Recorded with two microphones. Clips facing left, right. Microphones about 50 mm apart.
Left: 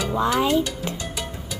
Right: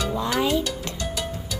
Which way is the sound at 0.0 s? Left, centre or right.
Centre.